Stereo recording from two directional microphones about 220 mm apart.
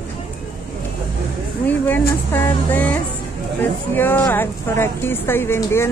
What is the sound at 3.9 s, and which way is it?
A woman's voice, 10° left (ahead or behind).